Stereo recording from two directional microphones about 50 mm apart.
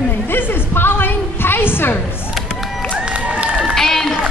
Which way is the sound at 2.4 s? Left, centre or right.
Centre.